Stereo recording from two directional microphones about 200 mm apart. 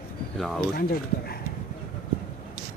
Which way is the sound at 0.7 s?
50° left (ahead or behind).